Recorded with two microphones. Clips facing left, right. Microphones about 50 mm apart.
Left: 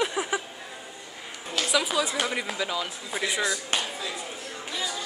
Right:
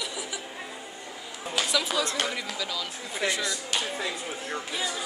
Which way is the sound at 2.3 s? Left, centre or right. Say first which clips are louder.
Left 4 dB; left.